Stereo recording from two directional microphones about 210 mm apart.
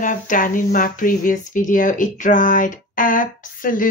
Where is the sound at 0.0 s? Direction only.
40° left (ahead or behind).